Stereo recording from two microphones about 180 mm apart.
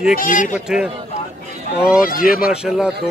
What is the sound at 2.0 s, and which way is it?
Speech, 55° left (ahead or behind).